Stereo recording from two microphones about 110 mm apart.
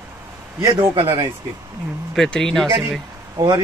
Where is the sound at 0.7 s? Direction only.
55° right (ahead or behind).